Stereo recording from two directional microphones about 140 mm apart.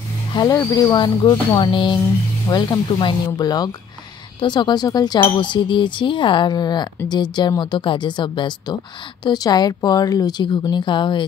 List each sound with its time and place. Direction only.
0.3 s speech: 30° left (ahead or behind)